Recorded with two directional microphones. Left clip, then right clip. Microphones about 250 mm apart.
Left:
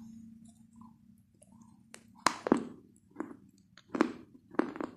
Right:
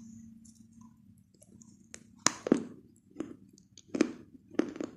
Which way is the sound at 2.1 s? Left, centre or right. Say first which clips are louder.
Even; right.